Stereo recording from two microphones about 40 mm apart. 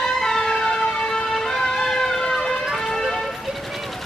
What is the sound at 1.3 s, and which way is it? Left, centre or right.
Emergency vehicle, centre.